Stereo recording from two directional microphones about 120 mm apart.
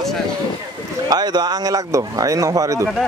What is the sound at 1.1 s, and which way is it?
Speech, 35° right (ahead or behind).